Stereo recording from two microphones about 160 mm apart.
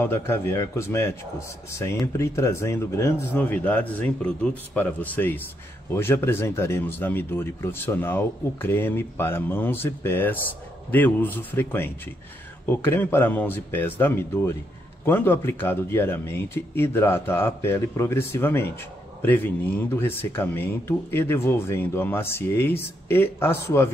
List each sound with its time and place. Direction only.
0.0 s speech: 15° left (ahead or behind)